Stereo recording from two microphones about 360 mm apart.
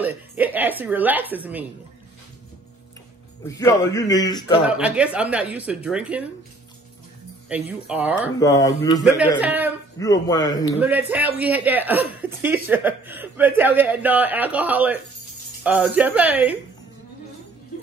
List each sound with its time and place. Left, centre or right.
0.0 s speech: centre
3.4 s a man's voice: centre
4.6 s speech: centre
7.4 s speech: centre
8.4 s a man's voice: centre
9.4 s speech: centre
9.9 s a man's voice: centre
10.8 s speech: centre